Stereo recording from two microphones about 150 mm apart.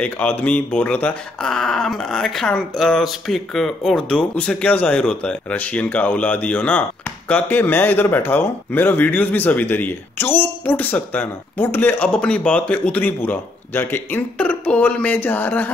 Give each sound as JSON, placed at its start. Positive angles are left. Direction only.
{"t": 0.0, "sound": "speech", "side_deg": 10}